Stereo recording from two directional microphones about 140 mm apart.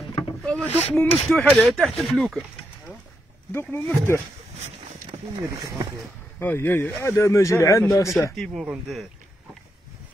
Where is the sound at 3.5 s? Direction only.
15° left (ahead or behind).